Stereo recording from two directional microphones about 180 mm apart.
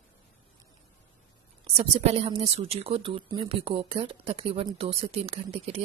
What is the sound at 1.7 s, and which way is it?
Speech, 35° right (ahead or behind).